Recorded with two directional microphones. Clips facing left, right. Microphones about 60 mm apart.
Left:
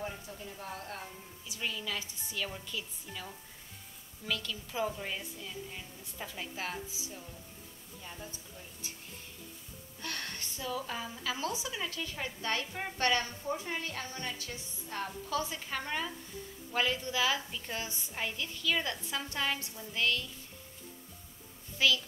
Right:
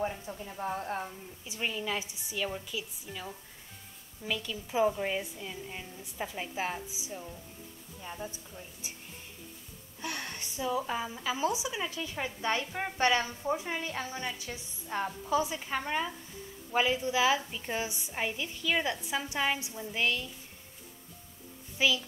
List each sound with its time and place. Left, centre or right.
0.0 s a woman's voice: right; by 9.0 s centre
10.0 s a woman's voice: centre
21.7 s a child's voice: centre